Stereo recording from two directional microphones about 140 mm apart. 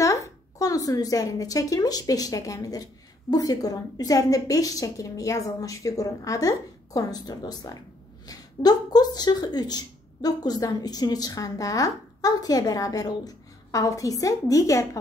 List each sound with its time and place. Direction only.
0.0 s speech: 20° left (ahead or behind)